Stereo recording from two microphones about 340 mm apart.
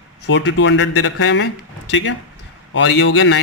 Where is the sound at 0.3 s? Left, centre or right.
Left.